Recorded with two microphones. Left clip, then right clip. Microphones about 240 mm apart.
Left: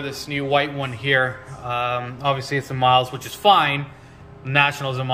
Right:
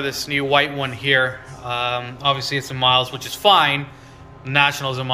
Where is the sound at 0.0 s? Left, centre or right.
Centre.